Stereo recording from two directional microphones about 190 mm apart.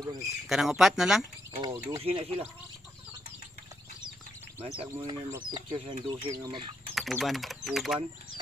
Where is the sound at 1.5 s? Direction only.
20° right (ahead or behind).